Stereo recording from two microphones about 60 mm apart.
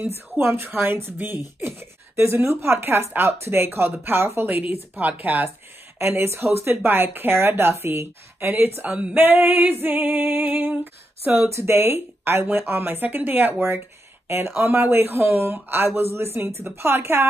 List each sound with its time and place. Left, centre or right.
0.0 s speech: right
5.9 s speech: right
11.5 s speech: right